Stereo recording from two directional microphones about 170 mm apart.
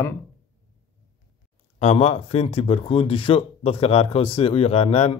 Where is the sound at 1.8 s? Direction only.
35° left (ahead or behind).